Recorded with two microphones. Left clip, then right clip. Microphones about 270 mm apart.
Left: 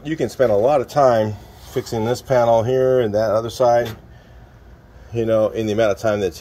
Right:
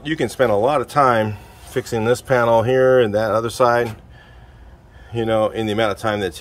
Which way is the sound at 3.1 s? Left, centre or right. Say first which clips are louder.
Even; right.